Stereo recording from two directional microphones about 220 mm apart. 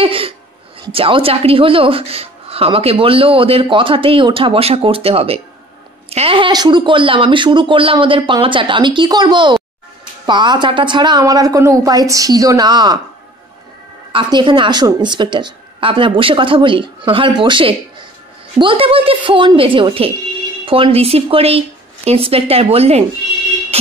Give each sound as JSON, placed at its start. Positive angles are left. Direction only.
{"t": 0.0, "sound": "a woman's voice", "side_deg": -25}
{"t": 14.1, "sound": "speech", "side_deg": -20}
{"t": 23.7, "sound": "music", "side_deg": -25}